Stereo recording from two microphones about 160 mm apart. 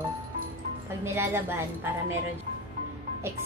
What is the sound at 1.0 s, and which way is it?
Speech, 15° right (ahead or behind).